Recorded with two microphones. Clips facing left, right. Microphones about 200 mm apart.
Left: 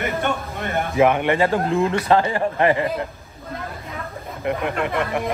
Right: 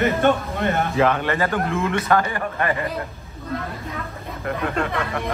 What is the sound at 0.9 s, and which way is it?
Speech, 15° left (ahead or behind).